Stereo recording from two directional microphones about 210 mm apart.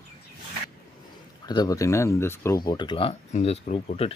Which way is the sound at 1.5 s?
20° left (ahead or behind).